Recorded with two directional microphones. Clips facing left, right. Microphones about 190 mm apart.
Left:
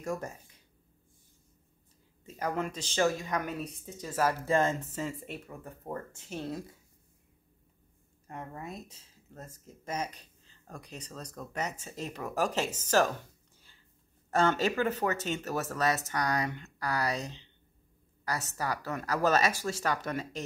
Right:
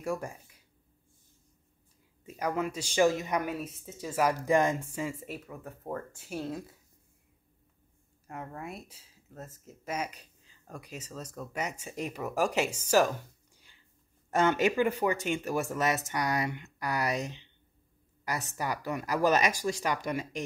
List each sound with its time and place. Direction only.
0.0 s speech: 10° right (ahead or behind)
2.2 s speech: 10° right (ahead or behind)
3.4 s speech: 5° right (ahead or behind)
8.3 s speech: 5° right (ahead or behind)
14.3 s speech: 15° right (ahead or behind)